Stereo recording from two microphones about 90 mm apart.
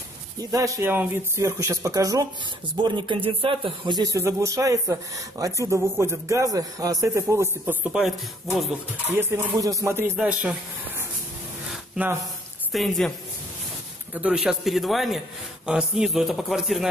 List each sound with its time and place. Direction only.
0.4 s speech: 40° right (ahead or behind)
0.8 s speech: 25° right (ahead or behind)
2.8 s a man's voice: 60° right (ahead or behind)
4.2 s speech: 35° right (ahead or behind)
7.8 s speech: 15° right (ahead or behind)
9.1 s speech: 30° right (ahead or behind)
10.1 s speech: 10° right (ahead or behind)
12.7 s a man's voice: centre (ahead or behind)
14.1 s a man's voice: 10° right (ahead or behind)